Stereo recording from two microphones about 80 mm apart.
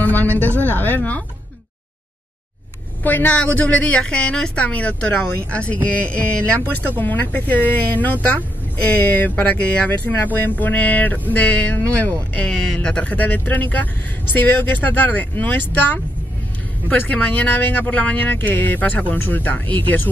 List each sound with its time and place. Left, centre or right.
0.0 s speech: left
3.0 s a woman's voice: left
12.4 s speech: centre